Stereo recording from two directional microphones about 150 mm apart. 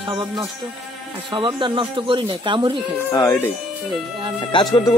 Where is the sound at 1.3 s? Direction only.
35° right (ahead or behind).